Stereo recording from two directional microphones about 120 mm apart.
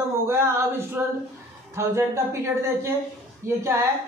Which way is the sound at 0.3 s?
20° right (ahead or behind).